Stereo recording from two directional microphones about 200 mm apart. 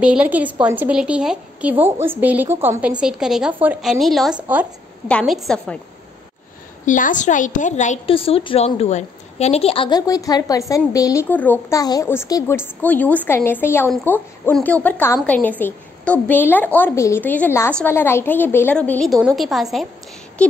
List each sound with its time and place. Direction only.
0.0 s a woman's voice: 5° right (ahead or behind)
6.9 s a woman's voice: 40° left (ahead or behind); by 19.9 s centre (ahead or behind)